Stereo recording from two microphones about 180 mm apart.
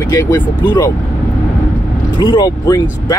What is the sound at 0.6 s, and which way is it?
Speech, 25° left (ahead or behind).